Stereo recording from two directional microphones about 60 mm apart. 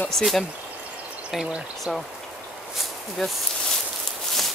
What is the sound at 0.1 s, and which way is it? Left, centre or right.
Speech, centre.